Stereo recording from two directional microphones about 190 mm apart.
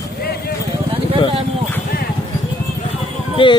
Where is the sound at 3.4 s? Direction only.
25° left (ahead or behind).